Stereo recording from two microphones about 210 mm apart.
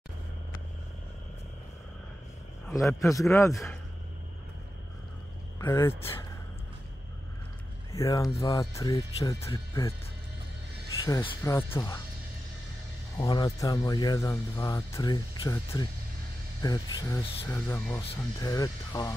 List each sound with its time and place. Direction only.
2.7 s speech: 15° left (ahead or behind)
5.6 s speech: 10° left (ahead or behind)
7.9 s speech: 15° left (ahead or behind)
11.1 s speech: 15° left (ahead or behind)
13.2 s speech: 20° left (ahead or behind)